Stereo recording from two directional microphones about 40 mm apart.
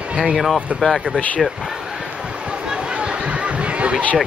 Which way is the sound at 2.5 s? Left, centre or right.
Right.